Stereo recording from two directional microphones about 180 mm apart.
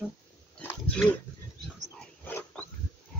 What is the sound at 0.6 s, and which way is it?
Pig, 5° left (ahead or behind).